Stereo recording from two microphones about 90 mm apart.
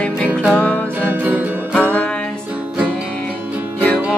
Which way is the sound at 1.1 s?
20° right (ahead or behind).